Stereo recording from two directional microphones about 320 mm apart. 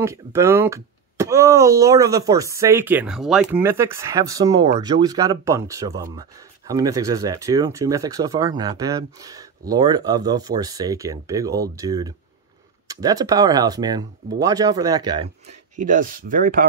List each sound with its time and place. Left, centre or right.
0.0 s speech: centre
15.7 s speech: right